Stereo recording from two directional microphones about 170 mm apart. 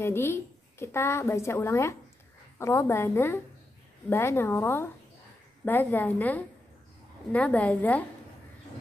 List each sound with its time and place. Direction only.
0.0 s a woman's voice: 15° left (ahead or behind)